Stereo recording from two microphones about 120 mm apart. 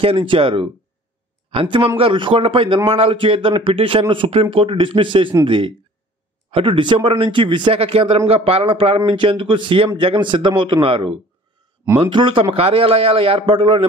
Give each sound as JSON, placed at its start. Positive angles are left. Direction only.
{"t": 0.0, "sound": "a man's voice", "side_deg": -50}